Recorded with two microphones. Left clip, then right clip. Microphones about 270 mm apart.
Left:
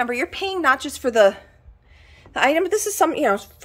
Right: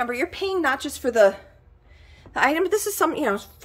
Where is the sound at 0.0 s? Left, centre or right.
Centre.